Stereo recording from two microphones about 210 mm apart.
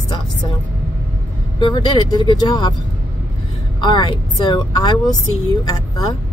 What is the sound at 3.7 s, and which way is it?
A woman's voice, 20° left (ahead or behind).